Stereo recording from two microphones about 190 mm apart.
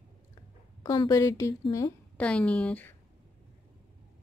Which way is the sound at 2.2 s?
5° left (ahead or behind).